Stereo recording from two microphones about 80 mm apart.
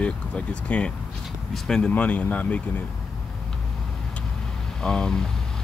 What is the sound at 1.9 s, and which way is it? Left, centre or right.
Speech, centre.